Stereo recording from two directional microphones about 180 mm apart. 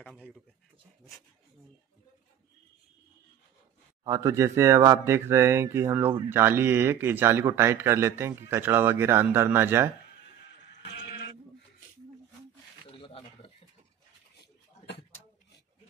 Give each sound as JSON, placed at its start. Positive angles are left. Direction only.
{"t": 0.0, "sound": "speech", "side_deg": 0}
{"t": 4.0, "sound": "speech", "side_deg": -20}
{"t": 10.6, "sound": "music", "side_deg": 75}
{"t": 12.9, "sound": "a sound", "side_deg": 30}